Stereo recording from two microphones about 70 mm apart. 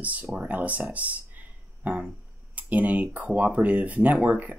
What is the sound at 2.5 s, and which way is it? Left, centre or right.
Speech, right.